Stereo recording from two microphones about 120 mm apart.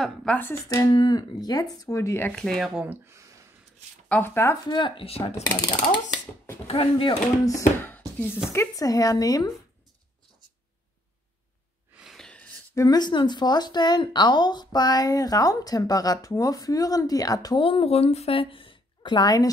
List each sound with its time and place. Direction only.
0.0 s speech: 5° left (ahead or behind)
0.4 s speech: 20° left (ahead or behind)
0.8 s speech: 40° left (ahead or behind); by 2.3 s 20° left (ahead or behind)
2.3 s speech: 5° left (ahead or behind)
2.8 s speech: 15° right (ahead or behind)
4.1 s speech: 20° left (ahead or behind)
4.6 s speech: 40° left (ahead or behind)
6.7 s speech: 50° left (ahead or behind)
7.4 s speech: 25° left (ahead or behind)
12.0 s gasp: 5° right (ahead or behind)
12.3 s a sound: 10° left (ahead or behind)
12.7 s speech: 35° left (ahead or behind)
17.6 s a woman's voice: 50° left (ahead or behind); by 19.5 s 30° left (ahead or behind)